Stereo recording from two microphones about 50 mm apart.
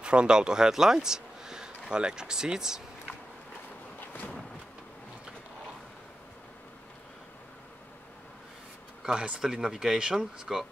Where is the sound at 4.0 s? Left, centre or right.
Left.